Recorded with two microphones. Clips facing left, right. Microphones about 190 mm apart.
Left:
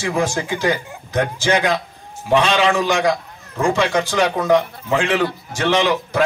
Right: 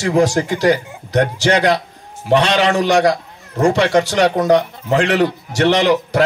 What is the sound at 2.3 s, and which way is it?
A man's voice, 40° right (ahead or behind).